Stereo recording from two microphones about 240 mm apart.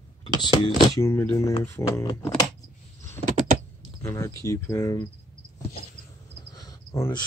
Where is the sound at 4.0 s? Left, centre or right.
Centre.